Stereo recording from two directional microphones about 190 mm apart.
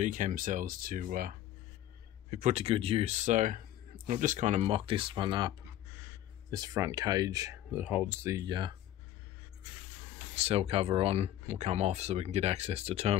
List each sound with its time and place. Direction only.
0.0 s speech: 40° right (ahead or behind)
2.3 s speech: 40° right (ahead or behind)
10.3 s speech: 35° right (ahead or behind)